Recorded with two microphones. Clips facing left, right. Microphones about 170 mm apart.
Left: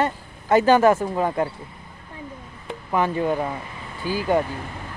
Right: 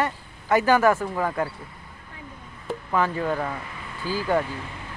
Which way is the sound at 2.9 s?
20° left (ahead or behind).